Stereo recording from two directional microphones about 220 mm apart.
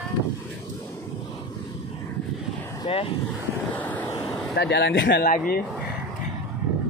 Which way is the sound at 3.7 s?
5° left (ahead or behind).